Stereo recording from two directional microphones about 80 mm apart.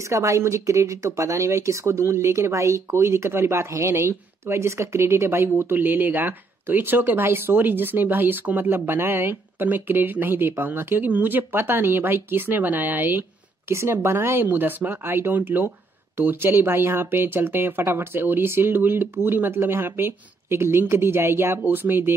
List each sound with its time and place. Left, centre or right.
0.1 s speech: right